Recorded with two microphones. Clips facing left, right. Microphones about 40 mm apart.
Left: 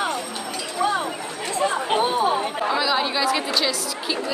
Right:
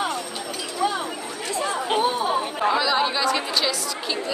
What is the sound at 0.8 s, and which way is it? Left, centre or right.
Speech, centre.